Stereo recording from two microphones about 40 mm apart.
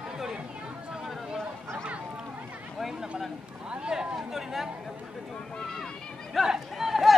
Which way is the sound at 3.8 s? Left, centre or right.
Right.